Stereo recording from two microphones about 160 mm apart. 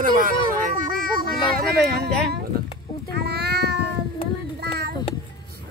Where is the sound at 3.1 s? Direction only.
90° right.